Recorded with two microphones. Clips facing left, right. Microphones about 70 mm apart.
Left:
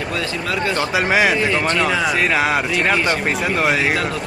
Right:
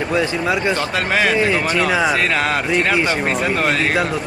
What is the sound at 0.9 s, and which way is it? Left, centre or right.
Speech, centre.